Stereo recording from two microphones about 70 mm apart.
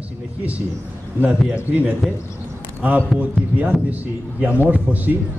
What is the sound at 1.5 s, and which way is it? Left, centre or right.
Speech, right.